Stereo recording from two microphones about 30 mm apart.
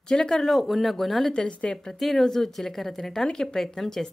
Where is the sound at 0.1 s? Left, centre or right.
Left.